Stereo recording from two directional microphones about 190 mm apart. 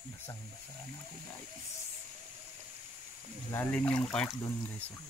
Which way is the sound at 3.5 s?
10° left (ahead or behind).